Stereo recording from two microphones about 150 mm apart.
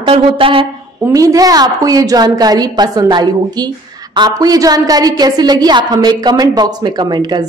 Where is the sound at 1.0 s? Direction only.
20° right (ahead or behind).